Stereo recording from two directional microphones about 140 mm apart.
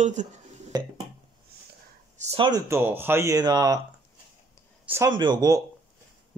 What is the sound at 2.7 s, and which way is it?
Speech, 15° right (ahead or behind).